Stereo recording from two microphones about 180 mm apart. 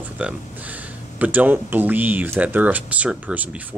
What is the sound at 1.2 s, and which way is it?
Speech, 10° right (ahead or behind).